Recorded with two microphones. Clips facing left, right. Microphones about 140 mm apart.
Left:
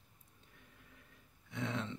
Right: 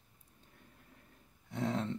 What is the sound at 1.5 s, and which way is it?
Speech, 40° right (ahead or behind).